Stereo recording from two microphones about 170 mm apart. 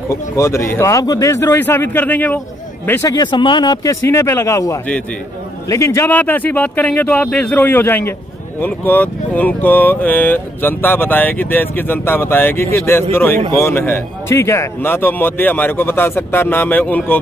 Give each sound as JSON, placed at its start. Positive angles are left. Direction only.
{"t": 0.1, "sound": "speech", "side_deg": 15}